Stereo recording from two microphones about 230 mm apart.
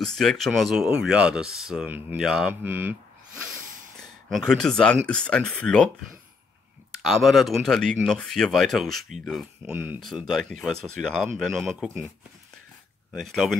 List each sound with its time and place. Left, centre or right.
0.0 s speech: centre
4.3 s speech: centre
7.0 s speech: centre
11.7 s speech: centre
13.1 s speech: centre